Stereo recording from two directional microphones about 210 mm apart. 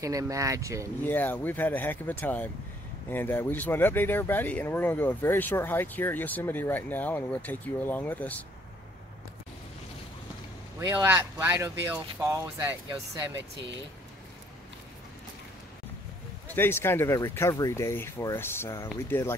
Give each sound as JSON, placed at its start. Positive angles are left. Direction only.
{"t": 0.0, "sound": "speech", "side_deg": -15}
{"t": 1.0, "sound": "speech", "side_deg": 10}
{"t": 10.8, "sound": "speech", "side_deg": -15}
{"t": 16.4, "sound": "speech", "side_deg": 10}